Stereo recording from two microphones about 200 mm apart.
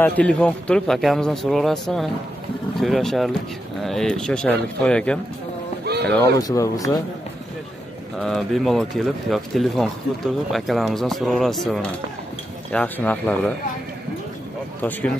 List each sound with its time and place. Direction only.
0.0 s speech: 5° left (ahead or behind)
5.9 s a sound: 55° right (ahead or behind)
6.4 s speech: 15° left (ahead or behind)
8.2 s speech: centre (ahead or behind)
14.8 s speech: 10° left (ahead or behind)